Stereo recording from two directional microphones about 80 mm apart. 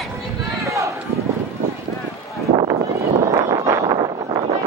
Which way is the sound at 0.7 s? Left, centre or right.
Right.